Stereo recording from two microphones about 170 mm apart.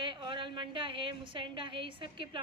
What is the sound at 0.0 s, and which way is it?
A woman's voice, 30° right (ahead or behind).